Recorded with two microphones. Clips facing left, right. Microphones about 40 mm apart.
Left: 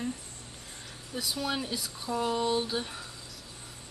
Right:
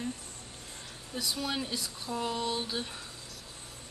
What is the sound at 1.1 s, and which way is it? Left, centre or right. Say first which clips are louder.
A woman's voice: left 1 dB; centre.